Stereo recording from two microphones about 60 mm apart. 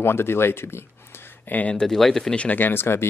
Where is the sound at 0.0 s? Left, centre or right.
Left.